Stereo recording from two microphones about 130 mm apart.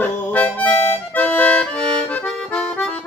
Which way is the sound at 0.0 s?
10° left (ahead or behind).